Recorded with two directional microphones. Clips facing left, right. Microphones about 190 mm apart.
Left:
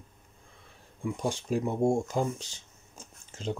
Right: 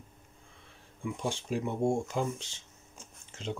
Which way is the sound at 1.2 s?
40° left (ahead or behind).